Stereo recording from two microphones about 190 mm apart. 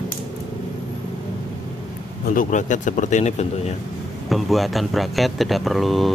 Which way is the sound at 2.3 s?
40° left (ahead or behind).